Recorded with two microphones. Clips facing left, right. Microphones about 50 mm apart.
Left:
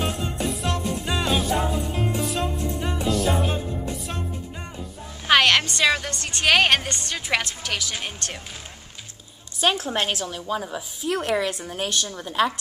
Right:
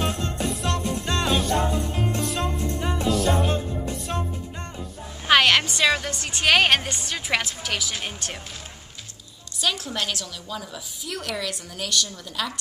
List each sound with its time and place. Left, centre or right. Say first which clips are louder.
0.0 s music: even; centre
5.2 s a woman's voice: even; centre
9.6 s a woman's voice: left 4 dB; left